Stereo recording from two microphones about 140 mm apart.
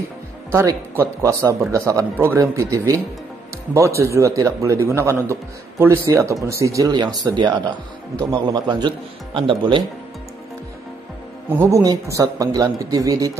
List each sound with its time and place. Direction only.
0.5 s a man's voice: 20° right (ahead or behind)
4.0 s a man's voice: 20° right (ahead or behind); by 9.8 s 35° right (ahead or behind)
11.5 s a man's voice: 20° right (ahead or behind)